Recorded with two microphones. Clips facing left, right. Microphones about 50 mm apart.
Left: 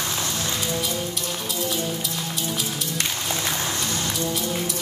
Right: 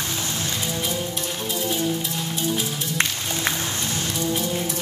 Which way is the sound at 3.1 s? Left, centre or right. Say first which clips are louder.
Right 1 dB; left.